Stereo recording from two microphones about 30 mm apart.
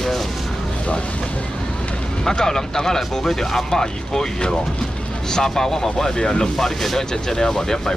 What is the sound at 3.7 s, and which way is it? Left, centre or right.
Speech, left.